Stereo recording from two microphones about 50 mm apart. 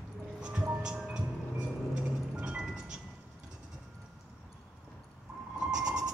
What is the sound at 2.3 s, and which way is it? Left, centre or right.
Music, centre.